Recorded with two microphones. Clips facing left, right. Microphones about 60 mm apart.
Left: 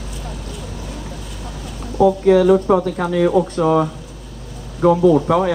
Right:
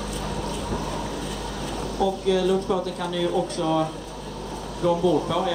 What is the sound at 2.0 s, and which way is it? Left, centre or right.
Speech, left.